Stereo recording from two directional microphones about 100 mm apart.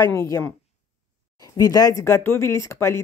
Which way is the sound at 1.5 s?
40° left (ahead or behind).